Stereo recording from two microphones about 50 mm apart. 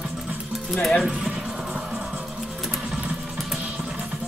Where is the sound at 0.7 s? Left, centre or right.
Centre.